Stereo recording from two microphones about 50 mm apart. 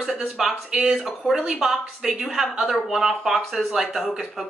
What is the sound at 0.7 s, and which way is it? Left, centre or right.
Speech, centre.